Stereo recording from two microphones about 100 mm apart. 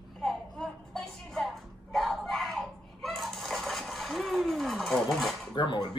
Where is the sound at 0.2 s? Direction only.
5° left (ahead or behind).